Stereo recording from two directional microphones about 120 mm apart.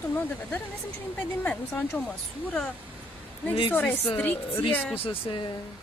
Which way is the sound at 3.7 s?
15° left (ahead or behind).